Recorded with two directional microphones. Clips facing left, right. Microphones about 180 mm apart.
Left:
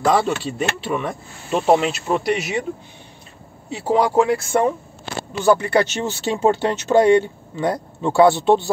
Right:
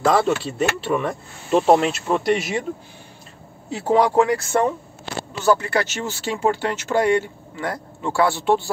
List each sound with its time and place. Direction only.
0.0 s speech: centre (ahead or behind)
3.7 s speech: centre (ahead or behind); by 8.6 s 20° left (ahead or behind)